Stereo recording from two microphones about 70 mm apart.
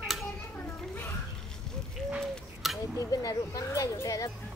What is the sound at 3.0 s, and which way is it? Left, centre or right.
Speech, left.